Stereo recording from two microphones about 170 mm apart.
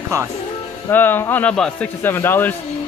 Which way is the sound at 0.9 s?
10° left (ahead or behind).